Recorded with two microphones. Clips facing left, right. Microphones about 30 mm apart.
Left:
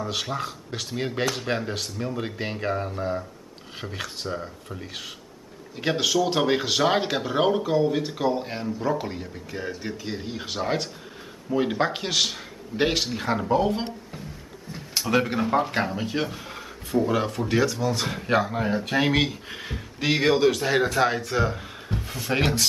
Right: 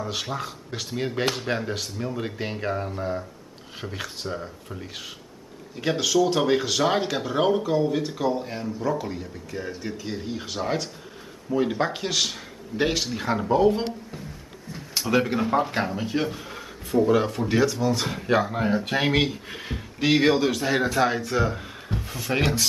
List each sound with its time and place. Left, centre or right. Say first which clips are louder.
0.0 s speech: left 1 dB; centre; by 8.6 s left
8.6 s speech: even; centre
13.1 s speech: even; centre
15.0 s speech: even; centre